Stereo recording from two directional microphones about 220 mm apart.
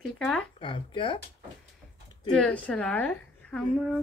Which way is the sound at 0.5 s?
25° left (ahead or behind).